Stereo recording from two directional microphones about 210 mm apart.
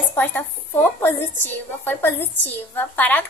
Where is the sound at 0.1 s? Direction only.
10° left (ahead or behind).